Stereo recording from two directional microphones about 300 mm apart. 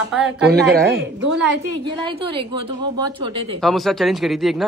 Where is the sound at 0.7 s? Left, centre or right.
Right.